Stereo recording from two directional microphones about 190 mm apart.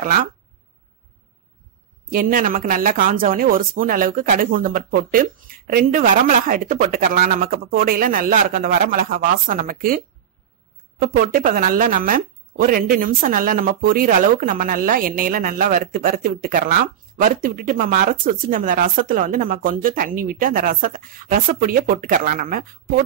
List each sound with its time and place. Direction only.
0.0 s speech: 45° right (ahead or behind)
2.0 s speech: 45° right (ahead or behind)